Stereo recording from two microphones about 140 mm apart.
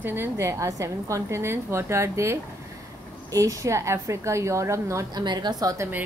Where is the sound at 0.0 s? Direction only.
15° right (ahead or behind).